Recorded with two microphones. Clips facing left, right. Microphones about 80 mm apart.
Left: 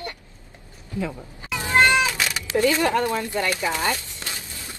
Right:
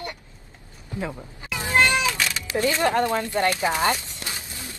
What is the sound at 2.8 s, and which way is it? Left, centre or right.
Speech, right.